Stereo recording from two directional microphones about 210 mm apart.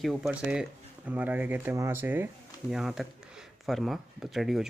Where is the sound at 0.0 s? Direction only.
Centre (ahead or behind).